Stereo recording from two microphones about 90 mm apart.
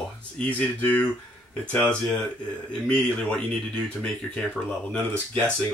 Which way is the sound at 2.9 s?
10° left (ahead or behind).